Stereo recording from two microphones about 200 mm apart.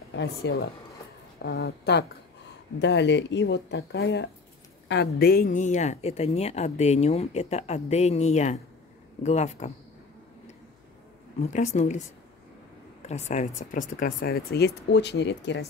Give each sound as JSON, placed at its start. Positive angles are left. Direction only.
{"t": 0.1, "sound": "speech", "side_deg": 60}
{"t": 11.5, "sound": "speech", "side_deg": 35}
{"t": 13.0, "sound": "speech", "side_deg": 35}